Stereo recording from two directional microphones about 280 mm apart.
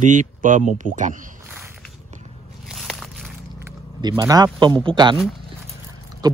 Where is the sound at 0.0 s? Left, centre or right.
Right.